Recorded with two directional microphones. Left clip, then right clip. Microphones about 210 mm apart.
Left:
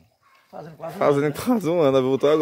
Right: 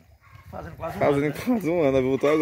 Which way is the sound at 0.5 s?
Centre (ahead or behind).